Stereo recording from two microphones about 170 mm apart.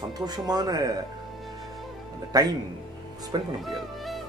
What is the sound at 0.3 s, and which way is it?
Speech, 25° right (ahead or behind).